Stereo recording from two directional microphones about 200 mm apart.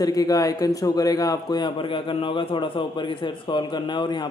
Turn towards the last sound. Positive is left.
turn(degrees=20)  # may be behind; listen again after turning